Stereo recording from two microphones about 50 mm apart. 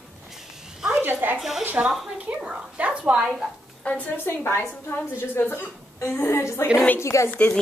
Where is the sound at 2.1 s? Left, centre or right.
Right.